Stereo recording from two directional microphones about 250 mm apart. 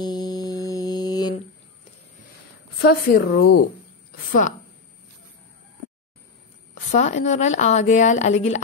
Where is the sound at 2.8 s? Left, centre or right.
Left.